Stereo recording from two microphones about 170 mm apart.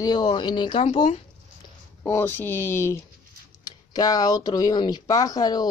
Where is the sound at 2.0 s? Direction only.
15° left (ahead or behind).